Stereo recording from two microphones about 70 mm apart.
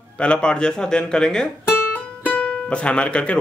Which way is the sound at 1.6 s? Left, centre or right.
Left.